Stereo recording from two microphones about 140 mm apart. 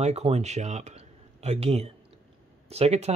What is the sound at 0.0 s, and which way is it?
Speech, 50° right (ahead or behind).